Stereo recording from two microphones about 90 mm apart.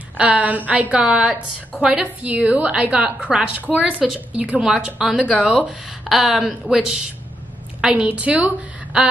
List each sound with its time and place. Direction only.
0.2 s a woman's voice: 15° right (ahead or behind)